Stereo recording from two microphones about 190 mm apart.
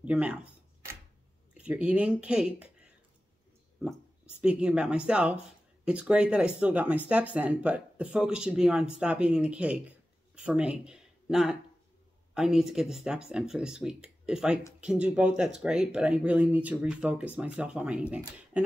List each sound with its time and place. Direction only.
0.0 s speech: 5° right (ahead or behind)
1.6 s speech: 5° right (ahead or behind)